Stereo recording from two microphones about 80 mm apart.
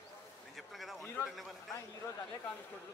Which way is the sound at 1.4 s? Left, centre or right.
Centre.